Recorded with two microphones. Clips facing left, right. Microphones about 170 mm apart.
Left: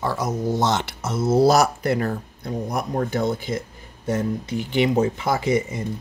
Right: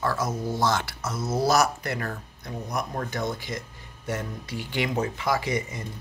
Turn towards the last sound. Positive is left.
turn(degrees=30)  # may be behind; listen again after turning